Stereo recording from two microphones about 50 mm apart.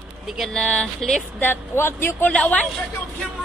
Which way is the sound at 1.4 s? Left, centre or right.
Left.